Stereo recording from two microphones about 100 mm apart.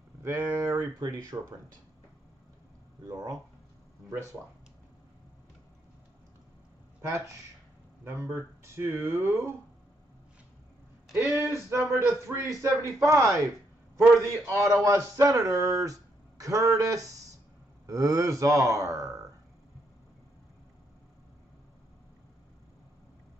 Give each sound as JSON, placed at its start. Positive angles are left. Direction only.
{"t": 0.2, "sound": "speech", "side_deg": -25}
{"t": 3.1, "sound": "speech", "side_deg": -35}
{"t": 7.0, "sound": "speech", "side_deg": -30}
{"t": 11.1, "sound": "speech", "side_deg": -30}
{"t": 14.4, "sound": "speech", "side_deg": -30}